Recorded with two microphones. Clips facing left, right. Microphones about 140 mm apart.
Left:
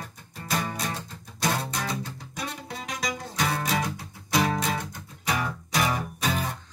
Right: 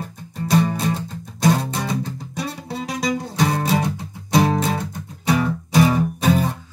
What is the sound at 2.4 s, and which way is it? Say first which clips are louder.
Music: right 6 dB; 30° right (ahead or behind).